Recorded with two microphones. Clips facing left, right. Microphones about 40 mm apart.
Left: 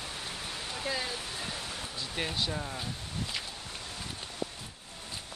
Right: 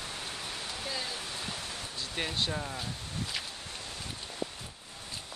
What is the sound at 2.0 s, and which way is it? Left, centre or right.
Speech, centre.